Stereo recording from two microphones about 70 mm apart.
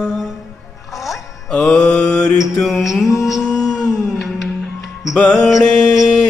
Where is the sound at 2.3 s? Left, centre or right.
Left.